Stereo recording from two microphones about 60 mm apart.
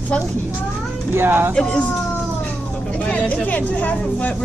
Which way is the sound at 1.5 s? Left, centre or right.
Centre.